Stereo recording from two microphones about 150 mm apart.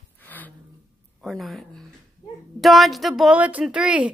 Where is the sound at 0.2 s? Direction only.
10° left (ahead or behind).